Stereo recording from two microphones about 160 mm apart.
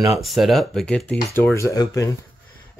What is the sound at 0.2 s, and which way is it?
Speech, centre (ahead or behind).